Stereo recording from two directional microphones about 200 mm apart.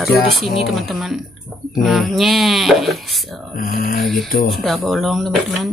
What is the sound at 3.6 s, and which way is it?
Mantra, 45° left (ahead or behind).